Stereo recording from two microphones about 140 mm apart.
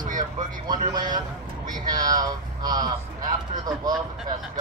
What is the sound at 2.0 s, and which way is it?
Speech, 30° right (ahead or behind).